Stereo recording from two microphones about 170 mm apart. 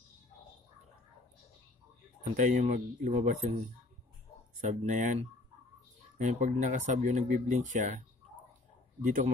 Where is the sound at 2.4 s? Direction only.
45° right (ahead or behind).